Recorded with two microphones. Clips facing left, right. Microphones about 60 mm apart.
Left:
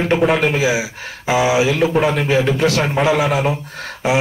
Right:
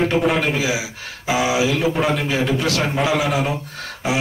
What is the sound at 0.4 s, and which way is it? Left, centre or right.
Beatboxing, left.